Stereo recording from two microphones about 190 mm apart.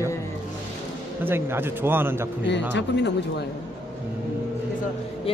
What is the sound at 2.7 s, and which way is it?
Speech, 65° left (ahead or behind).